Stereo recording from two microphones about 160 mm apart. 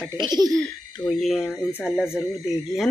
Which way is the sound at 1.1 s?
Centre (ahead or behind).